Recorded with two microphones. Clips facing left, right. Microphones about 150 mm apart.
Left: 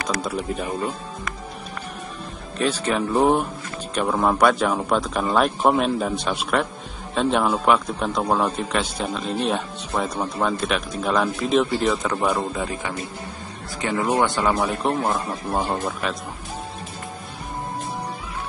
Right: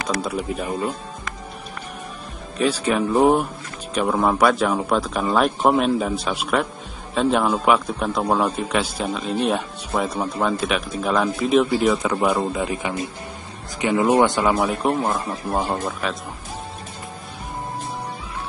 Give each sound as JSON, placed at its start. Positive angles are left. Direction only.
{"t": 0.1, "sound": "a man's voice", "side_deg": 0}
{"t": 2.5, "sound": "a man's voice", "side_deg": -10}
{"t": 14.5, "sound": "a man's voice", "side_deg": 0}